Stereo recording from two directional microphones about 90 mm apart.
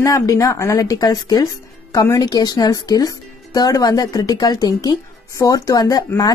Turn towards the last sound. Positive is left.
turn(degrees=45)  # may be behind; listen again after turning